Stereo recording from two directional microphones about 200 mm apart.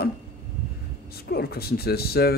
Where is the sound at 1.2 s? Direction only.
50° left (ahead or behind).